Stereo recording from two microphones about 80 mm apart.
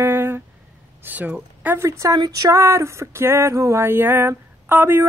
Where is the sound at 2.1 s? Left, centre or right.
Right.